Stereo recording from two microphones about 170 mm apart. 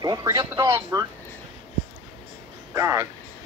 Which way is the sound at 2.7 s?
15° right (ahead or behind).